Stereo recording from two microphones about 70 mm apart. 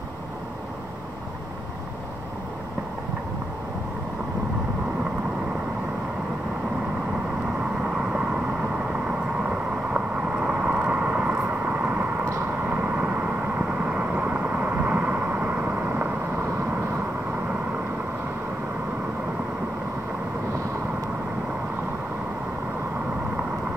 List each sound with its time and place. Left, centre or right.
7.8 s vehicle: centre
9.5 s vehicle: centre